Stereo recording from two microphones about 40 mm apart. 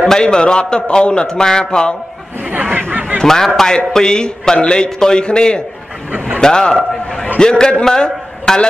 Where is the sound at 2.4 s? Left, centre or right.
Right.